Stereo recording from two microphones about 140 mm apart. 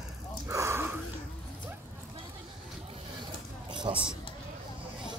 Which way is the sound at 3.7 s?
35° right (ahead or behind).